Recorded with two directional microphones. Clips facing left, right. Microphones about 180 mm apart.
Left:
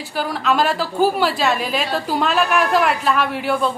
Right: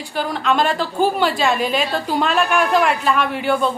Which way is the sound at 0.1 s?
5° left (ahead or behind).